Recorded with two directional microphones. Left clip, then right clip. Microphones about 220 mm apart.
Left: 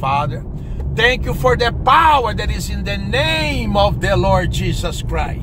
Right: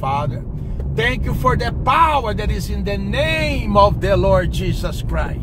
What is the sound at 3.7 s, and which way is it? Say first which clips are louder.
Speech: right 3 dB; 20° left (ahead or behind).